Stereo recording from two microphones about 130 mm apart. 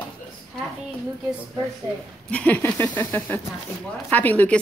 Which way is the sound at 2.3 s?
10° left (ahead or behind).